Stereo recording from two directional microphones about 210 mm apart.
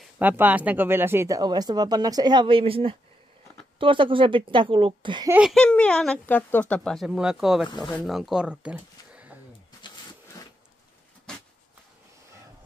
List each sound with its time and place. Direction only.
0.0 s a woman's voice: 10° right (ahead or behind)
5.3 s speech: centre (ahead or behind)